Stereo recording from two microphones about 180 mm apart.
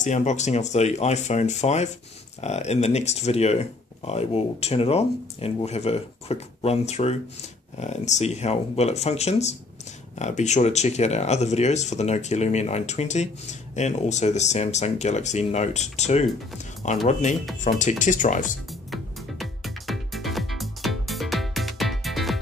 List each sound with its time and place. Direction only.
0.0 s speech: 40° left (ahead or behind)
18.7 s music: centre (ahead or behind)